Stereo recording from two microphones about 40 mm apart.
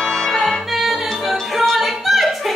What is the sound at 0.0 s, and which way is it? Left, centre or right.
Music, centre.